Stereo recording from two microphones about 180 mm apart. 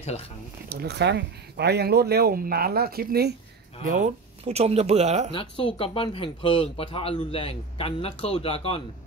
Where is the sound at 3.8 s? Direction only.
45° right (ahead or behind).